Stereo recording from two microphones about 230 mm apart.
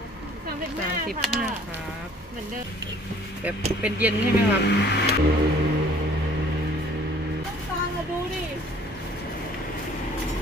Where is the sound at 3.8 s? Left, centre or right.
Centre.